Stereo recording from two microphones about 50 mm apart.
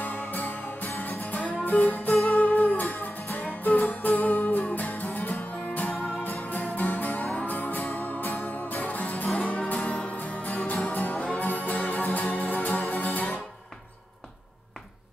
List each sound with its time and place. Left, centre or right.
0.0 s music: left